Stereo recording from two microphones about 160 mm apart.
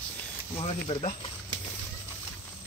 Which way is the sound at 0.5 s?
35° left (ahead or behind).